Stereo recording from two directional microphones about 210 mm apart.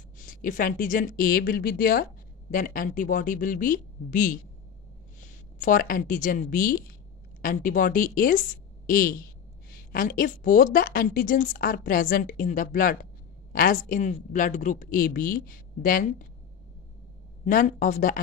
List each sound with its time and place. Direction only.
0.2 s a woman's voice: 40° left (ahead or behind)
5.6 s a woman's voice: 40° left (ahead or behind)
17.5 s a woman's voice: 40° left (ahead or behind)